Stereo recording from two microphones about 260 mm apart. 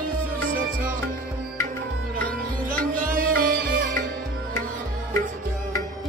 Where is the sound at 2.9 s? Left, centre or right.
Right.